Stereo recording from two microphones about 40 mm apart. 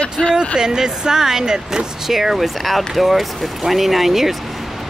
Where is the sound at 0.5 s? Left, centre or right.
Centre.